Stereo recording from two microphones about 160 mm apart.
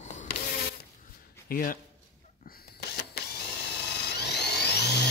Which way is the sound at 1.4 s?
60° left (ahead or behind).